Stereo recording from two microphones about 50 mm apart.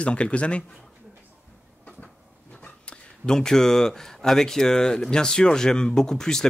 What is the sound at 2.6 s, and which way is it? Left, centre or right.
Speech, centre.